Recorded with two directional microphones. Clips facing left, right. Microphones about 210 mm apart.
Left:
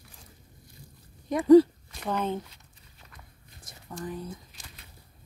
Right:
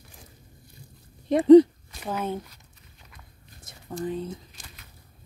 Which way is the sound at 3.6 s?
25° right (ahead or behind).